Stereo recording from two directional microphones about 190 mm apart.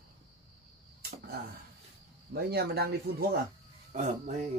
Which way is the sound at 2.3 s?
55° right (ahead or behind).